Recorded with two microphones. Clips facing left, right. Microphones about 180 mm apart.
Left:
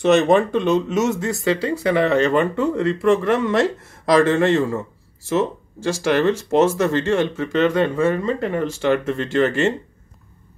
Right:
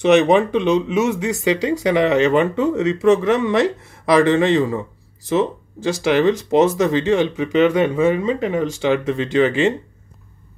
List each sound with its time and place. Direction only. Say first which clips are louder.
0.1 s speech: right 2 dB; 15° right (ahead or behind)